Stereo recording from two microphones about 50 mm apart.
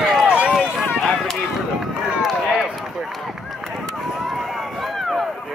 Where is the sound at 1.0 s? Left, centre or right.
Centre.